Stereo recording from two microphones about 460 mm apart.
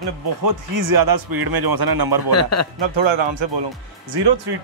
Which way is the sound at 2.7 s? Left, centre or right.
Right.